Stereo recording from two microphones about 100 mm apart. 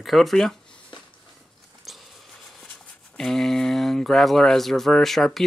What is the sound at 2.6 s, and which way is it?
Speech, 5° left (ahead or behind).